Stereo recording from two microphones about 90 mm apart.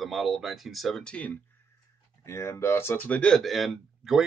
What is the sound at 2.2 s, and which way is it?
Speech, 30° left (ahead or behind).